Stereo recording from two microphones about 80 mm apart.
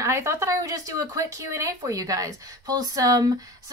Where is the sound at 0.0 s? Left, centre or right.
Right.